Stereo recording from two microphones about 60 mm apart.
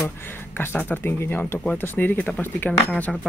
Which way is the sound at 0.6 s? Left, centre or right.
Left.